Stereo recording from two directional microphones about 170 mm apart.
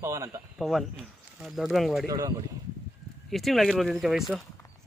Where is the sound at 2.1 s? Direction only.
20° right (ahead or behind).